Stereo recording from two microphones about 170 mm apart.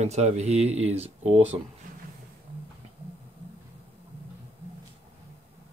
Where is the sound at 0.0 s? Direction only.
40° right (ahead or behind).